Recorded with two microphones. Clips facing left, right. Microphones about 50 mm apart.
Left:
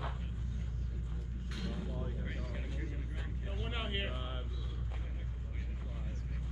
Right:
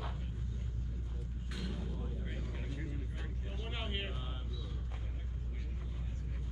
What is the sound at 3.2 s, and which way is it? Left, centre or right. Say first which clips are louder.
Vehicle: left 2 dB; centre.